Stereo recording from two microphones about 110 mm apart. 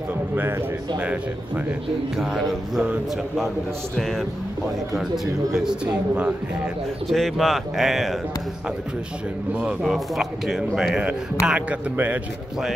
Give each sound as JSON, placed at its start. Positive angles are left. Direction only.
{"t": 0.4, "sound": "a man's voice", "side_deg": -20}
{"t": 9.5, "sound": "a man's voice", "side_deg": -10}
{"t": 9.8, "sound": "a man's voice", "side_deg": 0}